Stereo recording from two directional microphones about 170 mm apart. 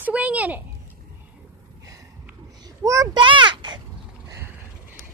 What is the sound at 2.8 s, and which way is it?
Speech, 20° right (ahead or behind).